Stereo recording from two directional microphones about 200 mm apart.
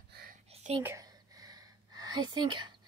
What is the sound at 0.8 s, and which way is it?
Gasp, 15° right (ahead or behind).